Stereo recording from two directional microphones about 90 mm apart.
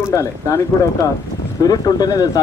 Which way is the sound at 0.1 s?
35° left (ahead or behind).